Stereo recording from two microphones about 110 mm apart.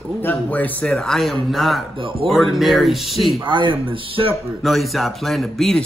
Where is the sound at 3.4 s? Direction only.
45° right (ahead or behind).